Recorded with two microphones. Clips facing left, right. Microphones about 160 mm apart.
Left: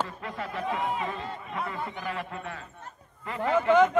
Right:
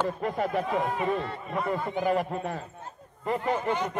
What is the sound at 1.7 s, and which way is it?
A man's voice, 40° right (ahead or behind).